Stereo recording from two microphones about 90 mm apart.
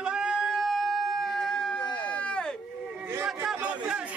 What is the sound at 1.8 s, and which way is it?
Run, 55° left (ahead or behind).